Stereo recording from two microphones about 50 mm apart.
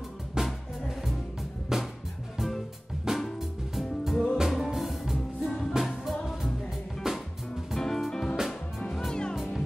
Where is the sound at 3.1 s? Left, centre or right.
Centre.